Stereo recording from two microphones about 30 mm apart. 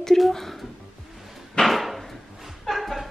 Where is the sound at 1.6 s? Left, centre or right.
Centre.